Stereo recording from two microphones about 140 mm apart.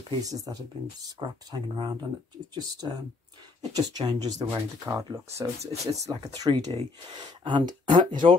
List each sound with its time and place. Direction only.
0.2 s speech: 25° right (ahead or behind); by 8.4 s 45° right (ahead or behind)